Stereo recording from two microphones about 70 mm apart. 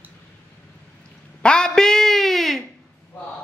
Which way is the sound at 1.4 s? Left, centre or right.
Centre.